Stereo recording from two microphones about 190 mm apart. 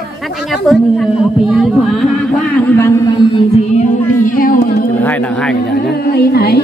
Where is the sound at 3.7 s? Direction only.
45° left (ahead or behind).